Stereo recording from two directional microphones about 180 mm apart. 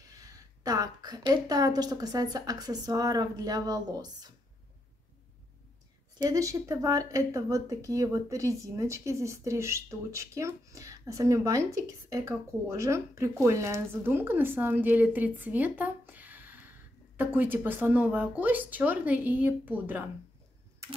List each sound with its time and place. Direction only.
0.1 s speech: 20° right (ahead or behind)
6.2 s speech: 20° right (ahead or behind)